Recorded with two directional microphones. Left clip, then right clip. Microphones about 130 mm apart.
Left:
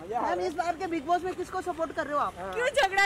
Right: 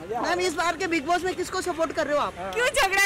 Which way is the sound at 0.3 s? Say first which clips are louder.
Right 8 dB; 35° right (ahead or behind).